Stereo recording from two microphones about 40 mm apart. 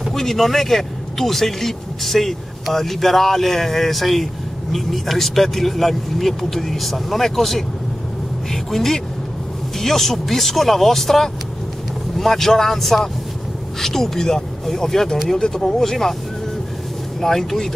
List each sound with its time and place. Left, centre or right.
0.1 s speech: centre
17.2 s speech: centre